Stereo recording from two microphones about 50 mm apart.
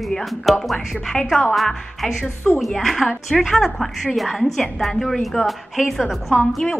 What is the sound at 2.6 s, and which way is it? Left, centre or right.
A woman's voice, centre.